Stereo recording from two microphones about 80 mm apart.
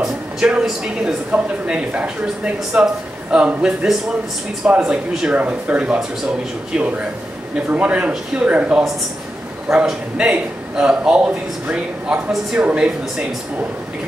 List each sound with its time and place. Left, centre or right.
0.0 s speech: centre
7.7 s speech: centre